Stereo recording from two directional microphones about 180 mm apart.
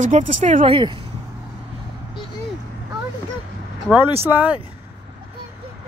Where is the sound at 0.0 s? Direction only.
40° right (ahead or behind).